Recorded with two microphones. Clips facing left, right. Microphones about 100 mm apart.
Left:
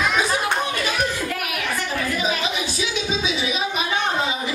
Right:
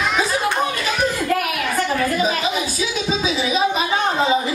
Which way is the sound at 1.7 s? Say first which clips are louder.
Right 7 dB; 45° right (ahead or behind).